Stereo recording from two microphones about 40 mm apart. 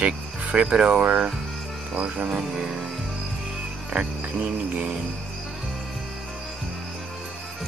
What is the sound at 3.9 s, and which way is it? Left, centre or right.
Cricket, right.